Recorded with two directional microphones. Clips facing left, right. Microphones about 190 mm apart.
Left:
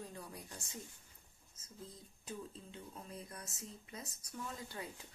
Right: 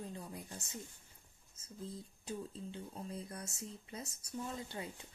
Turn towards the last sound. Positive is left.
turn(degrees=-25)  # may be behind; listen again after turning